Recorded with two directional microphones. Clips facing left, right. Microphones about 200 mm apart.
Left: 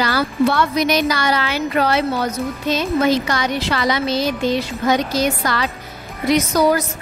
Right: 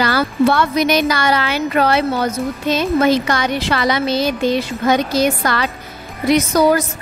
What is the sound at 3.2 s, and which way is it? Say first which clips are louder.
Speech: right 2 dB; 55° right (ahead or behind).